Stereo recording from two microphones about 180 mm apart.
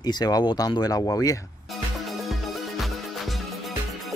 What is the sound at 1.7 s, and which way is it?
Music, centre (ahead or behind).